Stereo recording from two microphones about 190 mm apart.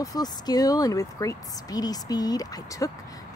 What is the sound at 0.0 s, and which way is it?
Speech, 20° left (ahead or behind).